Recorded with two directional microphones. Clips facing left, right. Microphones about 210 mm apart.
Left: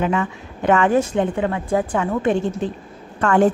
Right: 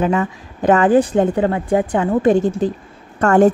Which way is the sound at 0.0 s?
35° right (ahead or behind).